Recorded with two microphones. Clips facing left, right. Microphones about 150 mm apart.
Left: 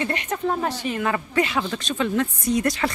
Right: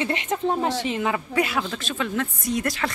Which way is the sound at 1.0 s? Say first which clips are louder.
Left 3 dB; 10° right (ahead or behind).